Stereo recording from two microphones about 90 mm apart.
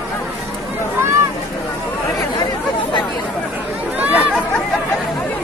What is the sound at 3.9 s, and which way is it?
Chatter, 20° right (ahead or behind).